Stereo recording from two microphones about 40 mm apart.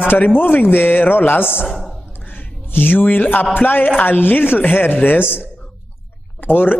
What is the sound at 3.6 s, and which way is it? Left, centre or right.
A man's voice, left.